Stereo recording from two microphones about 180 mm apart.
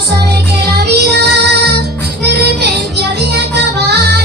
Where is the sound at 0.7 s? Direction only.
65° right (ahead or behind).